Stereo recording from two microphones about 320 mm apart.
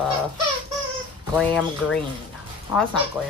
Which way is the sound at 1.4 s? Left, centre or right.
Centre.